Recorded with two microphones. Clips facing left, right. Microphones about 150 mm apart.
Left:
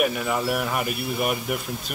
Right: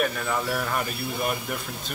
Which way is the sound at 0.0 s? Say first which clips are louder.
Left 3 dB; 10° left (ahead or behind).